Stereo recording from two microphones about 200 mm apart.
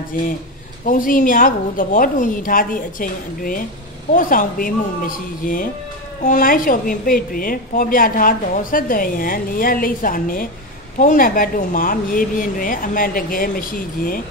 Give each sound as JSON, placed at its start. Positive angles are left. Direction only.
{"t": 0.8, "sound": "a woman's voice", "side_deg": 45}